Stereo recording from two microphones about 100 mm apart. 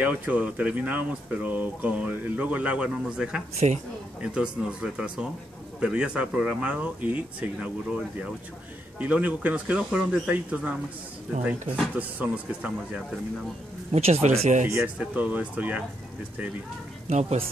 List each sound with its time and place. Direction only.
0.0 s speech: 15° right (ahead or behind)
13.9 s speech: 90° right
15.0 s speech: 15° right (ahead or behind)
17.2 s speech: 90° right